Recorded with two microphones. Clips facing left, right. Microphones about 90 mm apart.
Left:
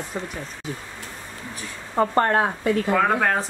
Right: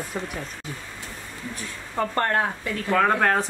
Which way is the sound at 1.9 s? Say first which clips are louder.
Left 4 dB; 20° left (ahead or behind).